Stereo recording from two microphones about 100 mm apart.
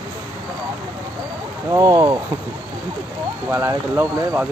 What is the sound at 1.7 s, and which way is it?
Boat, 35° right (ahead or behind).